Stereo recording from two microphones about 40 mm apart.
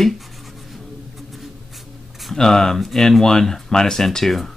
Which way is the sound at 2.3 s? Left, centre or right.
Centre.